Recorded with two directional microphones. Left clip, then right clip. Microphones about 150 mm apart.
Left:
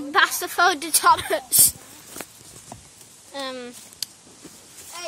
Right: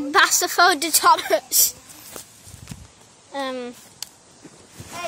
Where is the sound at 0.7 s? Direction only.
25° right (ahead or behind).